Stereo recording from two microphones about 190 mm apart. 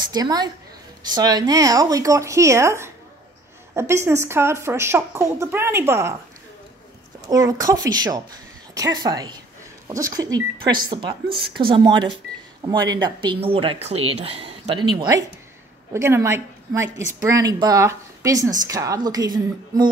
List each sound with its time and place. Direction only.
0.1 s a woman's voice: 20° right (ahead or behind)
7.2 s a woman's voice: 20° right (ahead or behind)